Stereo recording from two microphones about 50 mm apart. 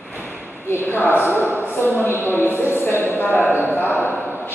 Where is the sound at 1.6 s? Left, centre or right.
Left.